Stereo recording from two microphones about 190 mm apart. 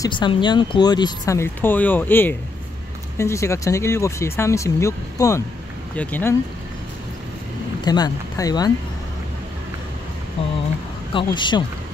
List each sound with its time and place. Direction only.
0.0 s speech: 25° left (ahead or behind); by 6.3 s 10° left (ahead or behind)
7.8 s speech: 20° left (ahead or behind)
11.1 s speech: 25° left (ahead or behind)